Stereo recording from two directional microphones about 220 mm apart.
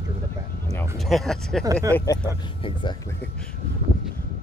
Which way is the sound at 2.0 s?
15° left (ahead or behind).